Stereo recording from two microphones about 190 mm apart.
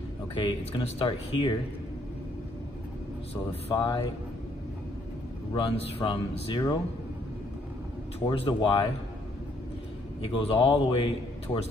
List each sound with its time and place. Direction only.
0.3 s a man's voice: 25° left (ahead or behind)
3.7 s a man's voice: 25° left (ahead or behind)
5.5 s a man's voice: 25° left (ahead or behind)
8.2 s a man's voice: 25° left (ahead or behind)
10.2 s a man's voice: 30° left (ahead or behind)